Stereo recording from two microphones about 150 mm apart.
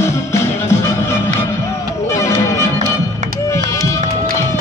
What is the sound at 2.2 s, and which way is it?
Music, 20° left (ahead or behind).